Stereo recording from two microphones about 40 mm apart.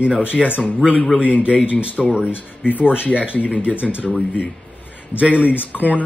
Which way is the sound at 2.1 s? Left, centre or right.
Right.